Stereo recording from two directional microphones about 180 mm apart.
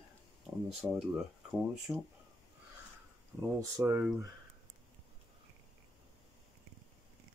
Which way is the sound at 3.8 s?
10° right (ahead or behind).